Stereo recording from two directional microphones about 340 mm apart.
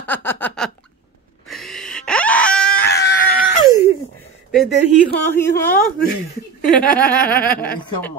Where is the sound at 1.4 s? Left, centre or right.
Centre.